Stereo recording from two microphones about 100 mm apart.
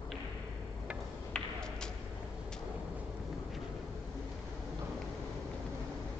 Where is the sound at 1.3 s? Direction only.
5° left (ahead or behind).